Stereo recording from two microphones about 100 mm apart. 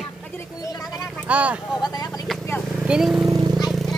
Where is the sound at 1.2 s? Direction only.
15° right (ahead or behind).